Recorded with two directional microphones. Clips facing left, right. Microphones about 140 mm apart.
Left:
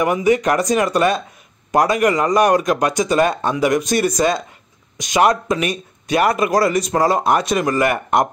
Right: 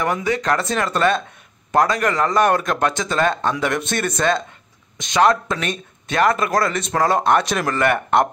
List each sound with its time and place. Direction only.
0.0 s speech: 15° left (ahead or behind)